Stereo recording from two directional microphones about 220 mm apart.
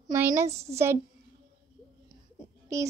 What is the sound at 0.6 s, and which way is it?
Speech, 10° right (ahead or behind).